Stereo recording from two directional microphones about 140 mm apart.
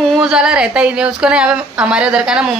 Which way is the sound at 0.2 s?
5° right (ahead or behind).